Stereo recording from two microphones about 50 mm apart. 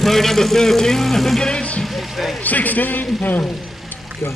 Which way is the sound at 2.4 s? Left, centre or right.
Left.